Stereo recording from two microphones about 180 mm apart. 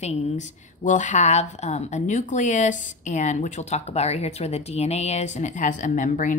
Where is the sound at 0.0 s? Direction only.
40° left (ahead or behind).